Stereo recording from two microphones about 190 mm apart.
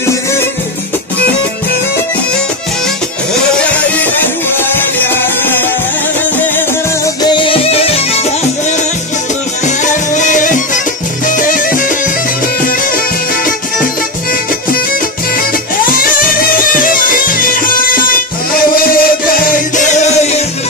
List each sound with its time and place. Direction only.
4.0 s music: 10° left (ahead or behind)
7.2 s music: 25° left (ahead or behind)
9.7 s music: 40° left (ahead or behind)
15.9 s music: 50° left (ahead or behind)